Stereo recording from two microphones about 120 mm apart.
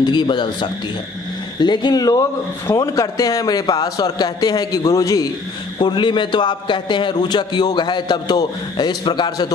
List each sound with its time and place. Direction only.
0.0 s a man's voice: 40° left (ahead or behind)
5.8 s a man's voice: 40° left (ahead or behind)